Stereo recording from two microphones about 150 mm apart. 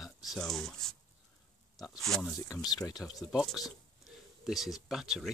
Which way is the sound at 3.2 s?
Centre (ahead or behind).